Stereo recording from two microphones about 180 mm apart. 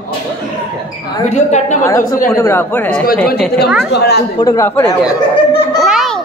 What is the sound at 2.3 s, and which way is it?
Speech, 15° left (ahead or behind).